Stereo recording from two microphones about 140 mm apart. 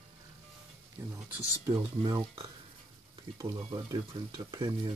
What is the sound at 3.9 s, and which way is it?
Speech, 35° right (ahead or behind).